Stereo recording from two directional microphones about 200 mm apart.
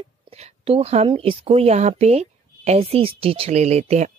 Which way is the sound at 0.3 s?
30° right (ahead or behind).